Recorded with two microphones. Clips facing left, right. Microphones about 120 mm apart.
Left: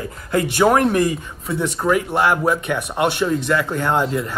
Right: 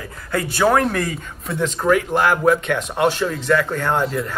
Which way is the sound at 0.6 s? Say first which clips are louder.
Left 2 dB; 15° left (ahead or behind).